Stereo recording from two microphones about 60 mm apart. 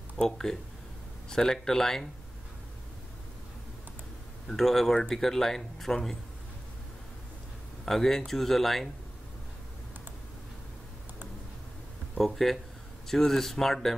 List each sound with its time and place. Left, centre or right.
0.2 s speech: centre
4.5 s speech: centre
7.8 s speech: centre
12.2 s speech: centre